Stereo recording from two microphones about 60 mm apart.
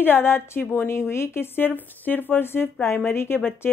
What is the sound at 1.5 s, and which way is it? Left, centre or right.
Speech, left.